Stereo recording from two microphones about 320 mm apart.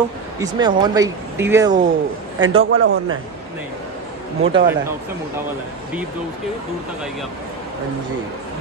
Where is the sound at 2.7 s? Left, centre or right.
Right.